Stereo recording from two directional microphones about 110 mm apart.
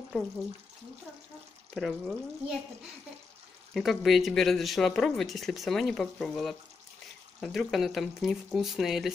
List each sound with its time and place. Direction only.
1.8 s speech: centre (ahead or behind)
3.7 s speech: centre (ahead or behind)